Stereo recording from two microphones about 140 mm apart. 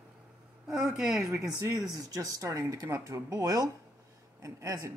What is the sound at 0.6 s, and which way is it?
Speech, 5° right (ahead or behind).